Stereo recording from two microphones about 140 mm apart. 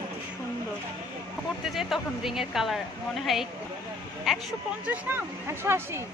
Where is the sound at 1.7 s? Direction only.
Centre (ahead or behind).